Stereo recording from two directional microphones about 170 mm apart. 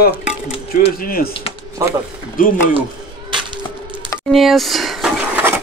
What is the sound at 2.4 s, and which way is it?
Speech, 55° left (ahead or behind).